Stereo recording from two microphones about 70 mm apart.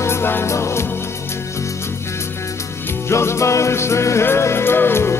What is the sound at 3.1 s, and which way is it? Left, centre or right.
Music, left.